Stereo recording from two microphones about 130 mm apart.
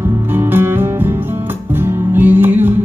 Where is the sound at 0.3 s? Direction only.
15° right (ahead or behind).